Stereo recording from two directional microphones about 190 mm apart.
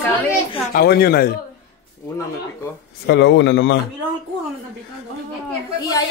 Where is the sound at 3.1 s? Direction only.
70° left (ahead or behind).